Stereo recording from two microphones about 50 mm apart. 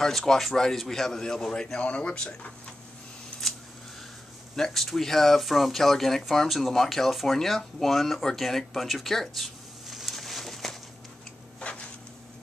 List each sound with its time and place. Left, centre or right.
0.0 s a man's voice: centre
1.8 s speech: left
4.6 s speech: centre